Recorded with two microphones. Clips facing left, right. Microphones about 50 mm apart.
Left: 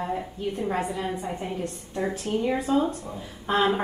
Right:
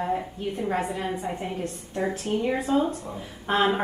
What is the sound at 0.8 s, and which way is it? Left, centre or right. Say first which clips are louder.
Speech: even; centre.